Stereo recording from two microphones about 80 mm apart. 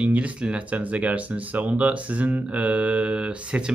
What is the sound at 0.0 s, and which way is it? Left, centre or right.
Speech, centre.